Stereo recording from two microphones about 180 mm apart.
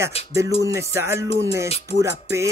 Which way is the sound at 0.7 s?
15° right (ahead or behind).